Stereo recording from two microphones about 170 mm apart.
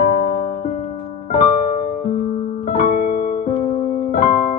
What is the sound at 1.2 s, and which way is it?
Music, 50° left (ahead or behind).